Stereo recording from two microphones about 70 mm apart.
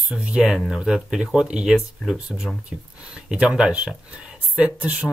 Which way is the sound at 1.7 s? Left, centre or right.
Centre.